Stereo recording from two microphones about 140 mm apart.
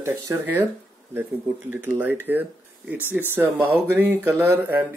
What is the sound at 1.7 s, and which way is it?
Speech, 15° right (ahead or behind).